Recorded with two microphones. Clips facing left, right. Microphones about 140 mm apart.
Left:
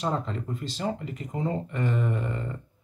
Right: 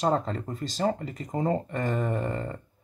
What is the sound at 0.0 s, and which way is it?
Speech, 40° right (ahead or behind).